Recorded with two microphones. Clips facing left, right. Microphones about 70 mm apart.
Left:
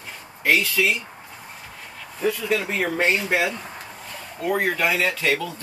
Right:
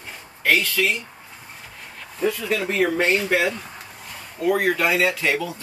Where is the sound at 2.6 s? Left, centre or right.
Centre.